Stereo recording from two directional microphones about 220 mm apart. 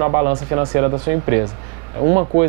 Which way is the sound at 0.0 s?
20° right (ahead or behind).